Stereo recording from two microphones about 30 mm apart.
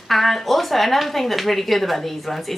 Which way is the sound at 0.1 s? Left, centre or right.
Centre.